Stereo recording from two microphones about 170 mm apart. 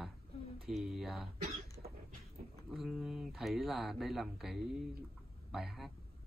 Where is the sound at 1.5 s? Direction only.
35° right (ahead or behind).